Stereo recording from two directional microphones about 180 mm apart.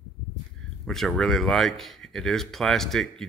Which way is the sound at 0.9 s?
Centre (ahead or behind).